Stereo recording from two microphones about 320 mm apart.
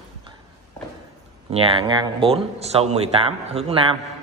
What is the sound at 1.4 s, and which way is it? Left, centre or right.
Speech, centre.